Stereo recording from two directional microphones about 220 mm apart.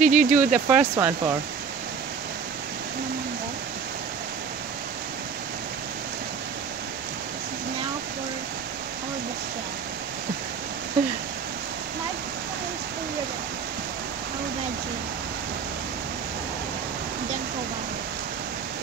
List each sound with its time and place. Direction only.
0.0 s speech: 35° right (ahead or behind)
0.4 s speech: 10° right (ahead or behind)